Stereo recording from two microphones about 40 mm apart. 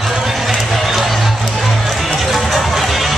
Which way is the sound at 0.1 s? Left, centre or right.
Centre.